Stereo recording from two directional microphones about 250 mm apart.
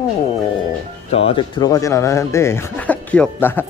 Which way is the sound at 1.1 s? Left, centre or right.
Left.